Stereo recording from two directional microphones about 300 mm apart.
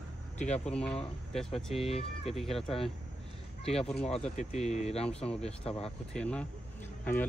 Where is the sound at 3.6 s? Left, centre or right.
Centre.